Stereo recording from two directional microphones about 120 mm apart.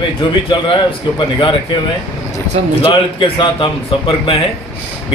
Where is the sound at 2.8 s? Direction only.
45° left (ahead or behind).